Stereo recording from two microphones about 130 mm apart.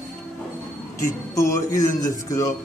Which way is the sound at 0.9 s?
25° left (ahead or behind).